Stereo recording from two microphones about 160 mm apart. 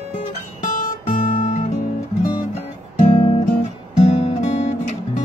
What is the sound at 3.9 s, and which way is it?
Guitar, 45° left (ahead or behind).